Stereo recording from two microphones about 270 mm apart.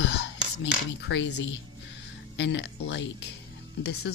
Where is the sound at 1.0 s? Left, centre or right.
Left.